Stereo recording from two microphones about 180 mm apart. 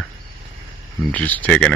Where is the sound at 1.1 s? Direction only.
10° left (ahead or behind).